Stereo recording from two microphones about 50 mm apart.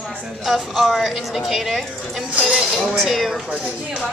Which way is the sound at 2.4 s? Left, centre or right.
Centre.